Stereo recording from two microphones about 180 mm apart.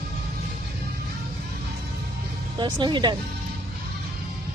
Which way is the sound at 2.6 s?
25° right (ahead or behind).